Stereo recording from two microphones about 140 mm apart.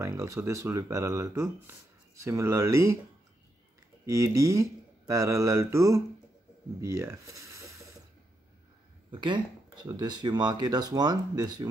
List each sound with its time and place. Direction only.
0.0 s speech: 20° right (ahead or behind)
4.0 s speech: 20° right (ahead or behind)
6.8 s a sound: 20° right (ahead or behind)
9.1 s speech: 35° right (ahead or behind)